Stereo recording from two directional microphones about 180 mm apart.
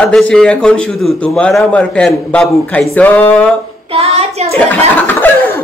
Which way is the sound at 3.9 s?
35° right (ahead or behind).